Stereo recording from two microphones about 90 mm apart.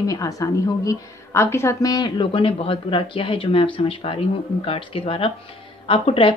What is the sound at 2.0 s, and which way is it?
Speech, 75° left (ahead or behind).